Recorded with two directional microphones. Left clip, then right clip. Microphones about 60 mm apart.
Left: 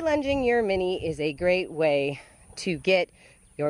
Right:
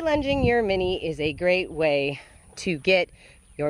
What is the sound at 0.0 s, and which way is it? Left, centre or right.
A woman's voice, centre.